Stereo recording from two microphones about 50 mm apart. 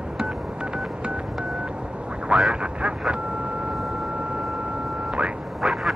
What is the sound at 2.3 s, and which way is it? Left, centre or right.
Quack, centre.